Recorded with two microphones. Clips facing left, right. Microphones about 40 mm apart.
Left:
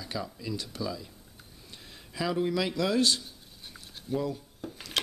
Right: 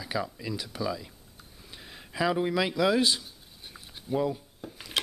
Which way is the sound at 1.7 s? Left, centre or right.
Centre.